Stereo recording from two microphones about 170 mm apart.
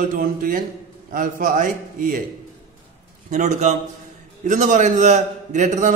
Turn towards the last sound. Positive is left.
turn(degrees=-45)  # may be behind; listen again after turning